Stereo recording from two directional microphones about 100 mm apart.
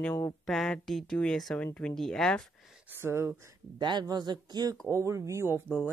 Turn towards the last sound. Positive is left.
turn(degrees=-25)  # may be behind; listen again after turning